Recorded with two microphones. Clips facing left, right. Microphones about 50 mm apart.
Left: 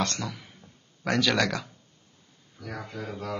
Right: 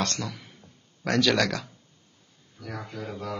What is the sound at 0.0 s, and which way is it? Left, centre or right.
Speech, centre.